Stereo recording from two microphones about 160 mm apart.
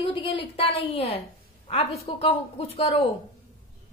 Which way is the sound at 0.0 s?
35° left (ahead or behind).